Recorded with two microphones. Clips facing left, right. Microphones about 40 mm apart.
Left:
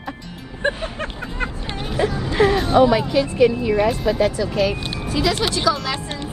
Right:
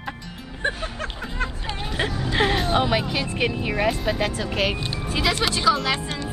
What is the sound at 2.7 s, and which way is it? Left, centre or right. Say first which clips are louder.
Speech: left 7 dB; right.